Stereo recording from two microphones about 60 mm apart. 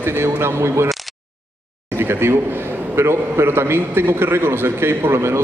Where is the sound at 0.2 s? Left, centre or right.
Right.